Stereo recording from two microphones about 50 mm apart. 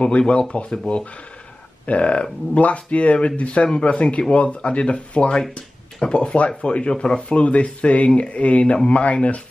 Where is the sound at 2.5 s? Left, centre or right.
Left.